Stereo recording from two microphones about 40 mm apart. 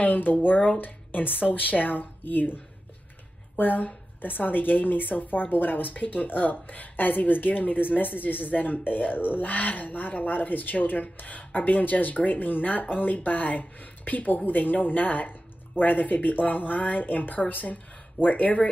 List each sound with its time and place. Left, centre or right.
0.0 s a woman's voice: left